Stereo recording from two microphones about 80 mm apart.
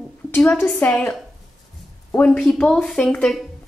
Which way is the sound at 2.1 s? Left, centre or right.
Centre.